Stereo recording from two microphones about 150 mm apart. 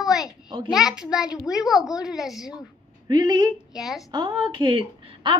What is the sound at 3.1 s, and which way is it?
Speech, 25° right (ahead or behind).